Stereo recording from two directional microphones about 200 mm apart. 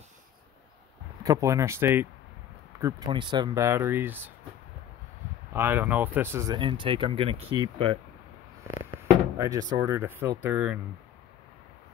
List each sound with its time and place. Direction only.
1.2 s speech: 15° right (ahead or behind)
2.8 s speech: 20° right (ahead or behind)
5.5 s speech: 10° right (ahead or behind)